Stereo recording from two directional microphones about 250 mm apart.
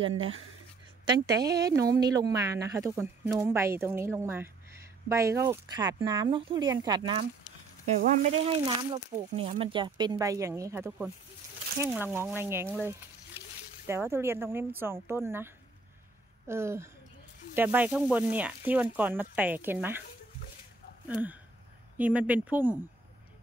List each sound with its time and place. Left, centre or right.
0.0 s speech: right
1.1 s speech: centre
21.1 s speech: centre